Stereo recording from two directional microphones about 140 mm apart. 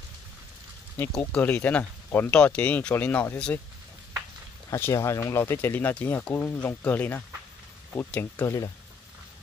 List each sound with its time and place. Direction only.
1.1 s speech: 10° left (ahead or behind)
4.6 s speech: 20° left (ahead or behind)